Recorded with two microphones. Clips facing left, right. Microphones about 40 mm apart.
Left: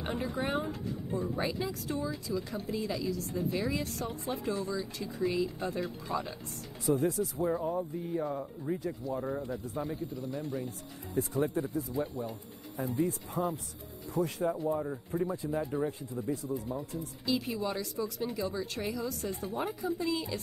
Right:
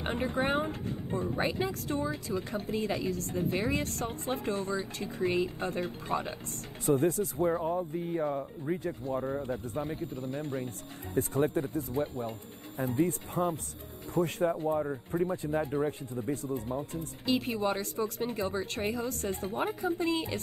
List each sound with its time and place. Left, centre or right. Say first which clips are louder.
0.0 s speech: right 3 dB; right
7.5 s speech: right 2 dB; right
15.7 s speech: right 2 dB; right
16.3 s speech: right 1 dB; right